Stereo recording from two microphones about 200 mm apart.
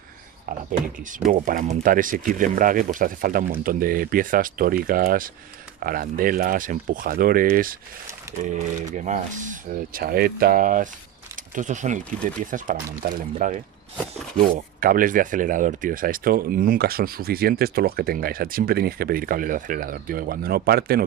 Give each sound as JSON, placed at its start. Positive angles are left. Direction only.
{"t": 0.5, "sound": "speech", "side_deg": -40}
{"t": 8.9, "sound": "speech", "side_deg": -35}